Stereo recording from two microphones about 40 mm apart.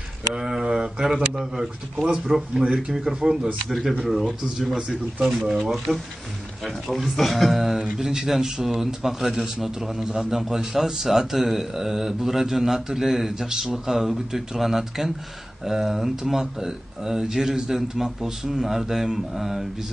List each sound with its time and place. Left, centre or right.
0.4 s a sound: centre
1.4 s a man's voice: centre
3.6 s a man's voice: centre
4.7 s a man's voice: centre
5.6 s a man's voice: centre
7.8 s a man's voice: centre